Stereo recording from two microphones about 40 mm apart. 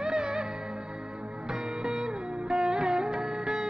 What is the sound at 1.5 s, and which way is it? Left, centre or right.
Music, centre.